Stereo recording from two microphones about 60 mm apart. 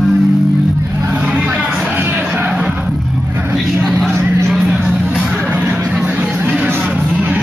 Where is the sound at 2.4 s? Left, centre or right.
Centre.